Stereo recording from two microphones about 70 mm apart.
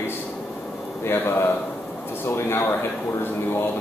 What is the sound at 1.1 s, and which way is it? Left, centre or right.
Speech, left.